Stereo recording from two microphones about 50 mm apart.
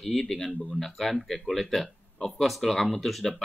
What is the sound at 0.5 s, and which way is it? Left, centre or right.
Speech, left.